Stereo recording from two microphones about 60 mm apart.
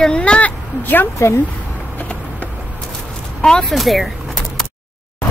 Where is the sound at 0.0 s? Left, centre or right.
Centre.